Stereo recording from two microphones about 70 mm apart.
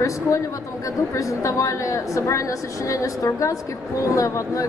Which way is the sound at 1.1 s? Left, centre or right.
Left.